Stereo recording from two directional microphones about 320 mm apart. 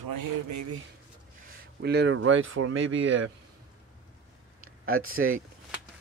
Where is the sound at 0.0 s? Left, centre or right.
Right.